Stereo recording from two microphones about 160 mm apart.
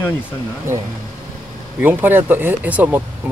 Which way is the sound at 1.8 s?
10° right (ahead or behind).